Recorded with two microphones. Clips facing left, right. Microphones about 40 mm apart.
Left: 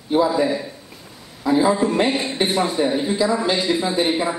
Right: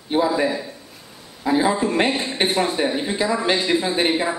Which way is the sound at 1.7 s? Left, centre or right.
Right.